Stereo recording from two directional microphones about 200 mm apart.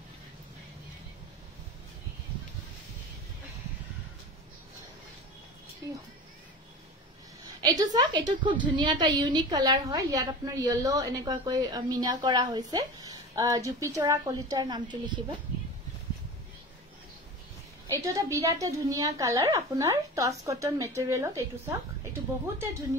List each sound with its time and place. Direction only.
7.6 s a woman's voice: 20° right (ahead or behind)
17.8 s a woman's voice: 15° right (ahead or behind)